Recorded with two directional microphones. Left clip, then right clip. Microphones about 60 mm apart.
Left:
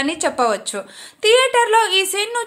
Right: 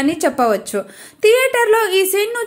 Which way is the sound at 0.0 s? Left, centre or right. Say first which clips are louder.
Right 2 dB; right.